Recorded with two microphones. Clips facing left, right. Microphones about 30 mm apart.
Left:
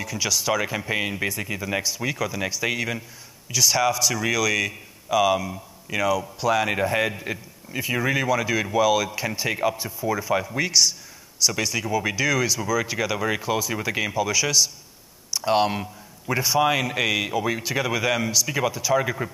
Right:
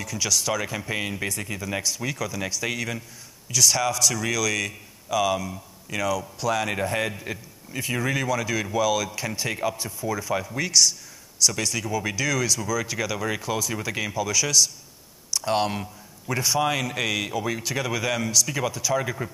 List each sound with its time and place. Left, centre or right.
0.0 s a man's voice: centre